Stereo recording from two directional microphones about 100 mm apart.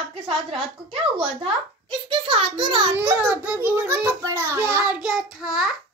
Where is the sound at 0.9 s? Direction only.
60° right (ahead or behind).